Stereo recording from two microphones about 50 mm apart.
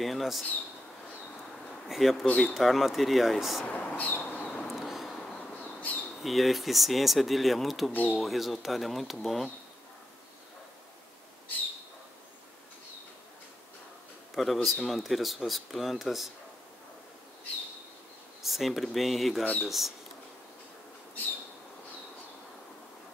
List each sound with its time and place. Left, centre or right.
0.0 s speech: centre
1.9 s speech: centre
3.6 s speech: left
3.9 s a sound: left
4.6 s a sound: centre
5.3 s a sound: left
6.2 s speech: centre
7.9 s speech: left
8.2 s speech: centre
14.3 s speech: centre
18.4 s speech: centre